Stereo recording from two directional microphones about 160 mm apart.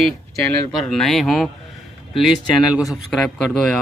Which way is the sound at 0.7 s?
Centre (ahead or behind).